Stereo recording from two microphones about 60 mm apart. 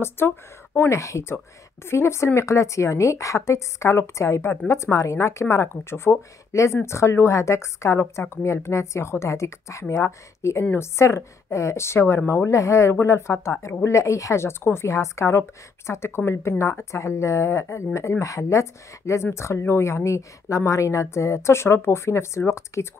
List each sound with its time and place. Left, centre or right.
0.2 s a woman's voice: left
0.8 s a woman's voice: left
10.6 s a woman's voice: left
11.0 s a woman's voice: left
18.2 s a woman's voice: left